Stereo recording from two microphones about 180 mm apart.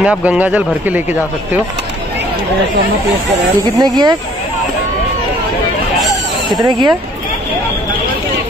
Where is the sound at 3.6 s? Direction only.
25° right (ahead or behind).